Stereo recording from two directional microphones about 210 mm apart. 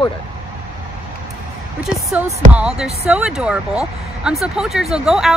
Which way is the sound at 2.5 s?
5° right (ahead or behind).